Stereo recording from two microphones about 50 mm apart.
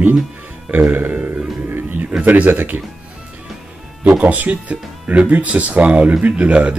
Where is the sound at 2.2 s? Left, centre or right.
Right.